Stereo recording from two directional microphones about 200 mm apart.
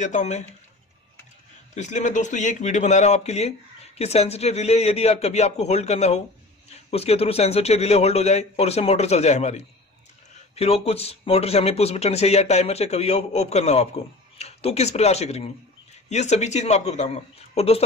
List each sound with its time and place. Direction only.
0.0 s speech: 35° left (ahead or behind)
1.8 s speech: 35° left (ahead or behind)